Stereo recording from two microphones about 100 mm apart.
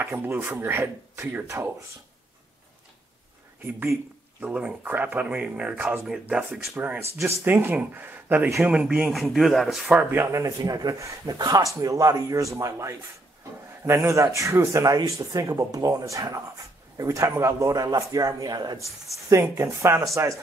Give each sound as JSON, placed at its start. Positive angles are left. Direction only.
{"t": 0.0, "sound": "speech", "side_deg": -20}
{"t": 4.4, "sound": "speech", "side_deg": -15}
{"t": 7.0, "sound": "speech", "side_deg": -30}
{"t": 9.8, "sound": "speech", "side_deg": -15}
{"t": 10.2, "sound": "speech", "side_deg": -30}
{"t": 19.2, "sound": "speech", "side_deg": -30}